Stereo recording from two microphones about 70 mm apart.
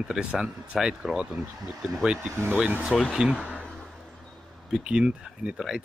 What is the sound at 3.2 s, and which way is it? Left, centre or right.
Speech, centre.